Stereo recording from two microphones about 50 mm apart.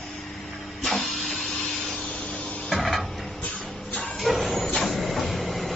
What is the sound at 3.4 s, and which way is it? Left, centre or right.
Music, left.